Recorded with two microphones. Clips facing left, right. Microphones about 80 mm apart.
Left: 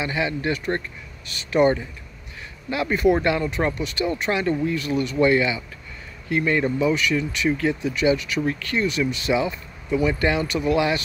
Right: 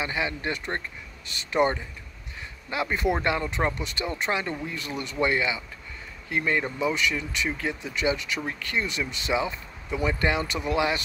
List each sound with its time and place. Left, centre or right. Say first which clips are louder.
0.0 s speech: left 4 dB; right